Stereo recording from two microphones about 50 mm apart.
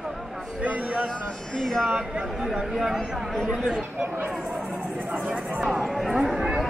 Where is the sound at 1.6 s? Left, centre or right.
Centre.